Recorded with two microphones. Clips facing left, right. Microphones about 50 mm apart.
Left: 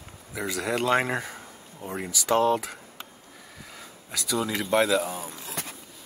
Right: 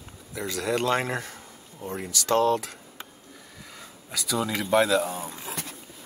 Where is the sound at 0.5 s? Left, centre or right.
Centre.